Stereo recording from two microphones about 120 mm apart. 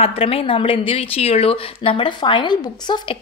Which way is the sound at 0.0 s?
55° left (ahead or behind).